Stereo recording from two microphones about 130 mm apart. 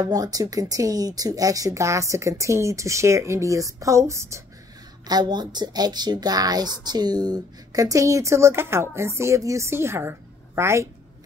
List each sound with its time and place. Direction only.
0.0 s speech: 30° right (ahead or behind)
5.0 s speech: 30° right (ahead or behind)